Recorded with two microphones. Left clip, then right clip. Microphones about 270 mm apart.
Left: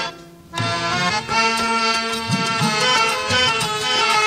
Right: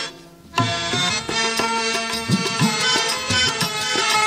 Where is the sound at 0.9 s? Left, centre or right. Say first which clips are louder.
Left 2 dB; right.